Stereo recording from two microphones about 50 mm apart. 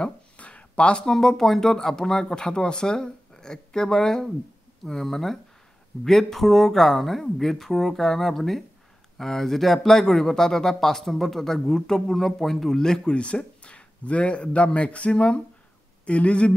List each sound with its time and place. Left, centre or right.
0.4 s a sound: left
1.0 s a man's voice: centre
13.1 s speech: left